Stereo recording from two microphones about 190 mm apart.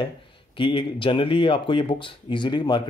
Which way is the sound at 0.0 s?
25° left (ahead or behind).